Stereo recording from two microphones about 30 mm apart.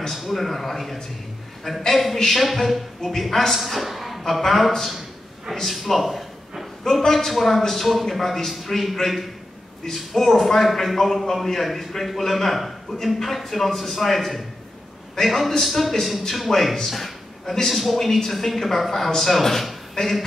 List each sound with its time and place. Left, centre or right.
0.1 s a man's voice: centre
3.5 s a woman's voice: centre
7.0 s a woman's voice: centre
7.2 s a man's voice: centre
16.8 s a sound: centre
17.6 s a man's voice: centre